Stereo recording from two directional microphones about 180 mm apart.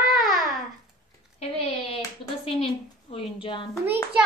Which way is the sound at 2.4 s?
30° left (ahead or behind).